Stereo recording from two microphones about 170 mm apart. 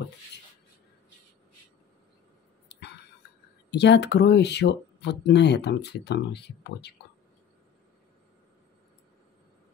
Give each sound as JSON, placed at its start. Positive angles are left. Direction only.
{"t": 3.7, "sound": "speech", "side_deg": 85}